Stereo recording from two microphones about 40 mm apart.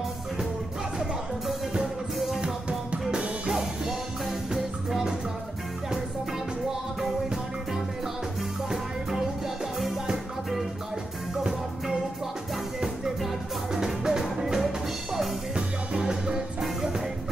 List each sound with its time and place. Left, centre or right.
2.1 s music: centre
3.4 s music: centre
9.8 s music: centre
13.8 s music: centre
15.5 s music: centre